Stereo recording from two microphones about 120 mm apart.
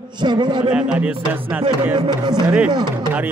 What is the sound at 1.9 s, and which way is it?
Speech, 40° right (ahead or behind).